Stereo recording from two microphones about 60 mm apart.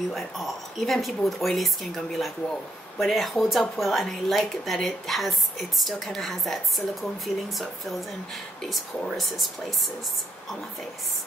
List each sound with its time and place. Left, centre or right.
0.1 s speech: centre
9.1 s speech: centre